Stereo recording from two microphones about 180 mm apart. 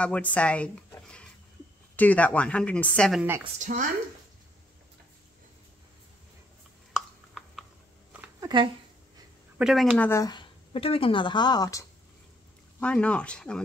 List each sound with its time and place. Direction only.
0.0 s speech: 5° left (ahead or behind)
3.4 s speech: 45° right (ahead or behind)
6.9 s a sound: centre (ahead or behind)
8.4 s a sound: 25° right (ahead or behind)
9.6 s speech: 5° right (ahead or behind)
9.9 s speech: 15° left (ahead or behind)
12.8 s speech: 5° left (ahead or behind)